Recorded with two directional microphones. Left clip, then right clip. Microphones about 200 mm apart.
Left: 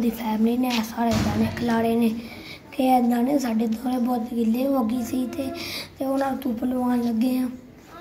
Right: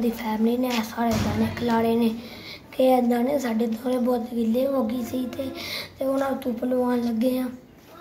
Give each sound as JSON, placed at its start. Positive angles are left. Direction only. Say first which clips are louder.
{"t": 0.0, "sound": "a woman's voice", "louder": "even", "side_deg": 10}